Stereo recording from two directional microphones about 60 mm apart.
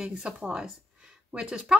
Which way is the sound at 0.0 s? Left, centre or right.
Centre.